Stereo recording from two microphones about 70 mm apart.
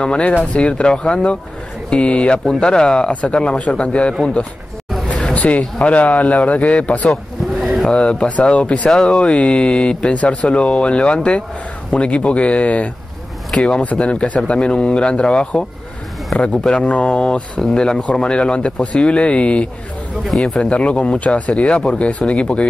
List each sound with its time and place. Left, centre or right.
0.0 s speech: centre
5.0 s a sound: centre
5.9 s a man's voice: centre
7.6 s a sound: centre
7.9 s speech: centre
20.2 s speech: centre